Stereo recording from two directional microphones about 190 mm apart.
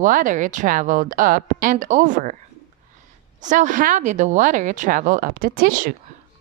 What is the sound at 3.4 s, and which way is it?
Speech, 40° right (ahead or behind).